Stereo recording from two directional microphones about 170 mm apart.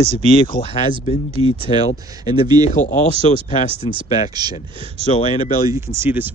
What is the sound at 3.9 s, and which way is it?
Speech, 35° left (ahead or behind).